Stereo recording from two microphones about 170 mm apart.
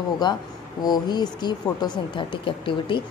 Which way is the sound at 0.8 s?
25° left (ahead or behind).